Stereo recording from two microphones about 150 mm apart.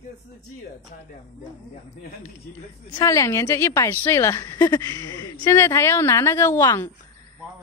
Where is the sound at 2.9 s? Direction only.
20° left (ahead or behind).